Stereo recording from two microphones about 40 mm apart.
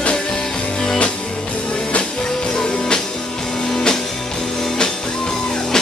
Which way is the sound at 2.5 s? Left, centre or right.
Centre.